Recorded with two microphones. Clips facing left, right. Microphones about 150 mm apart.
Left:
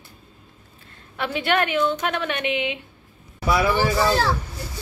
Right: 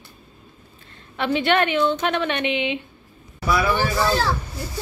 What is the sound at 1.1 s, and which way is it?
A woman's voice, 5° left (ahead or behind).